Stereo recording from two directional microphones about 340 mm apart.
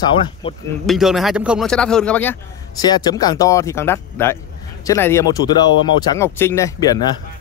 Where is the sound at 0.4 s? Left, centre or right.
Centre.